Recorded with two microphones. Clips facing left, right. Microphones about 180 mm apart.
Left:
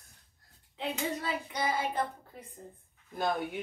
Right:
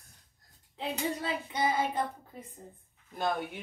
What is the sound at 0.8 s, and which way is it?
Speech, 25° right (ahead or behind).